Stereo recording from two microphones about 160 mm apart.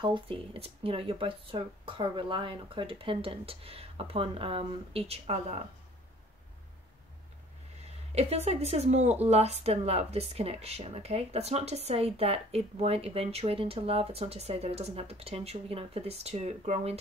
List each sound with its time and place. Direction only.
0.0 s speech: 35° right (ahead or behind)
8.1 s speech: 40° right (ahead or behind)